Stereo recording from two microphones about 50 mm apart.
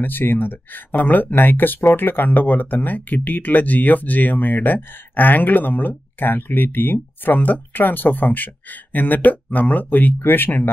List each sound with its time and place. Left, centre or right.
0.0 s speech: left